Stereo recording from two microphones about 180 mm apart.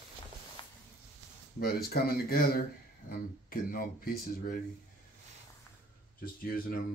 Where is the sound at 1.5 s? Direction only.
60° left (ahead or behind).